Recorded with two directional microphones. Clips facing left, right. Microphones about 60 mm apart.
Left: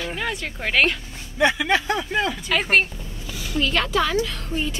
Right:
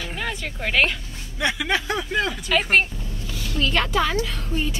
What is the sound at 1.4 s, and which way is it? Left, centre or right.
Speech, left.